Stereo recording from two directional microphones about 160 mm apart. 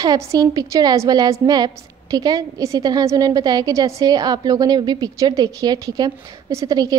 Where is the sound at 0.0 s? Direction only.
25° right (ahead or behind).